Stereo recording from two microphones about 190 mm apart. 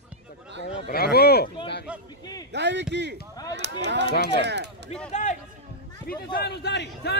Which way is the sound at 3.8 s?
65° right (ahead or behind).